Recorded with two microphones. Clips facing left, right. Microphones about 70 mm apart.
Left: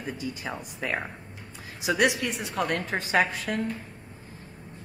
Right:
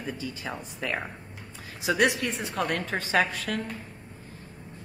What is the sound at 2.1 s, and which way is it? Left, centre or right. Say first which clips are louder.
Speech: even; right.